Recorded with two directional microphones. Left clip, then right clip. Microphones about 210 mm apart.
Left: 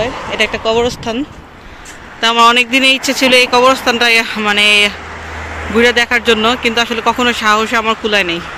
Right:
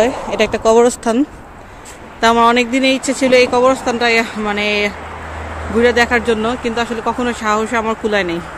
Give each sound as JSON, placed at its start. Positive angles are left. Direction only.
{"t": 0.0, "sound": "speech", "side_deg": -30}
{"t": 2.1, "sound": "speech", "side_deg": -20}